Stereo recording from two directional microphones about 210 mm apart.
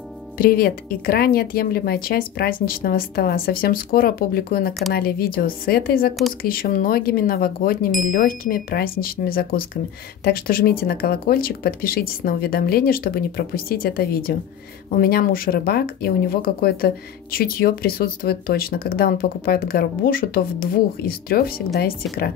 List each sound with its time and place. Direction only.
0.4 s speech: 45° left (ahead or behind)